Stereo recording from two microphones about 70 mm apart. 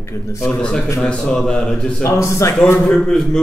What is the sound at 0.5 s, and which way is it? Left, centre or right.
Speech, centre.